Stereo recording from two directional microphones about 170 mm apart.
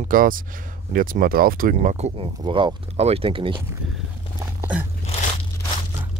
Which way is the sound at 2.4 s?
25° right (ahead or behind).